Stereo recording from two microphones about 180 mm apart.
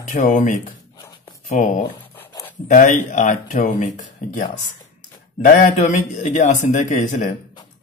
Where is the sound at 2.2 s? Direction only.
10° left (ahead or behind).